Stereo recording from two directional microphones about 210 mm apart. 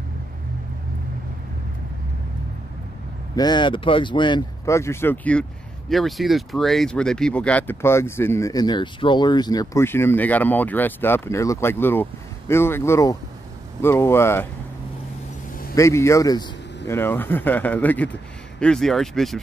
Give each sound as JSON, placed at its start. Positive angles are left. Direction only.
{"t": 3.3, "sound": "speech", "side_deg": 20}
{"t": 15.7, "sound": "speech", "side_deg": 15}